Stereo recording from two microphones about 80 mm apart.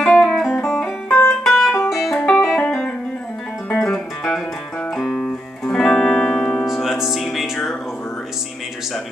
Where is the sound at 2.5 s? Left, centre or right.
Centre.